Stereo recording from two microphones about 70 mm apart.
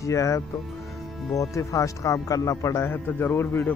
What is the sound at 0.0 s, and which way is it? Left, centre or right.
Speech, left.